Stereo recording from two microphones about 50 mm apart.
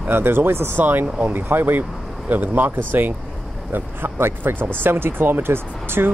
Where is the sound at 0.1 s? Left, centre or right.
Right.